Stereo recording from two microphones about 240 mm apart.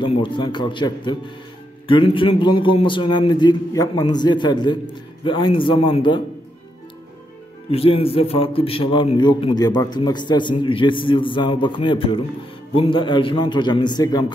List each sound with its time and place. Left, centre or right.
0.0 s a man's voice: centre
7.7 s a man's voice: left